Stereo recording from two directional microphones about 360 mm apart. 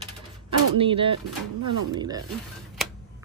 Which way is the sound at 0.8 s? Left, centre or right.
Centre.